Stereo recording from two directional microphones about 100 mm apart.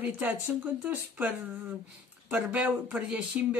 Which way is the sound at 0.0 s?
20° right (ahead or behind).